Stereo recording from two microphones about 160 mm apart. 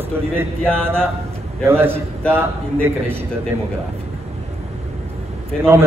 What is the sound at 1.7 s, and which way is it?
A man's voice, 15° right (ahead or behind).